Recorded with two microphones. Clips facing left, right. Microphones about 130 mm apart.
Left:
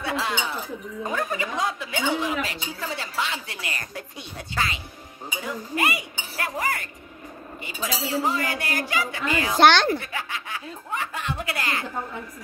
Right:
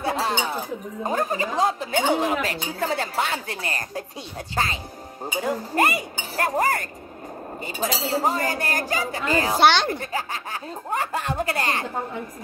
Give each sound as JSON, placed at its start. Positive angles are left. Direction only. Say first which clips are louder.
{"t": 0.0, "sound": "chink", "louder": "right 3 dB", "side_deg": -40}
{"t": 1.0, "sound": "speech", "louder": "right 3 dB", "side_deg": -40}
{"t": 5.4, "sound": "speech", "louder": "right 5 dB", "side_deg": -45}
{"t": 9.6, "sound": "speech", "louder": "left 2 dB", "side_deg": -10}
{"t": 9.9, "sound": "speech", "louder": "right 2 dB", "side_deg": -40}